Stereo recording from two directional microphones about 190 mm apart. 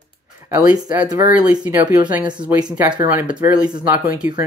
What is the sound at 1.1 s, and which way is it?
Speech, 5° right (ahead or behind).